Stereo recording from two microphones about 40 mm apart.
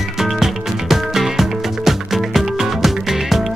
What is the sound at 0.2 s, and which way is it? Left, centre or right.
Music, centre.